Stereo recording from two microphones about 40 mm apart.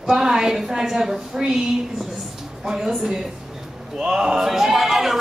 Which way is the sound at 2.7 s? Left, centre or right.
Centre.